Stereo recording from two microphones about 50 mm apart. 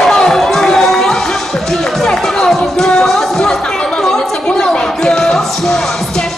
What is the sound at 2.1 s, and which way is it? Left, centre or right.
Music, centre.